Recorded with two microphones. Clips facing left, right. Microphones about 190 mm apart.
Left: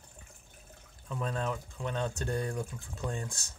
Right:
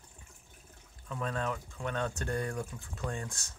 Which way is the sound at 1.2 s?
30° left (ahead or behind).